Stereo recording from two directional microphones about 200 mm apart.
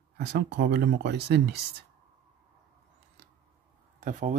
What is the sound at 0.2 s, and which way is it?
Speech, 55° right (ahead or behind).